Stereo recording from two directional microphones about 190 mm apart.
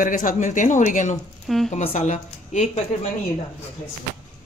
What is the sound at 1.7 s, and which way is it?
A woman's voice, 35° left (ahead or behind).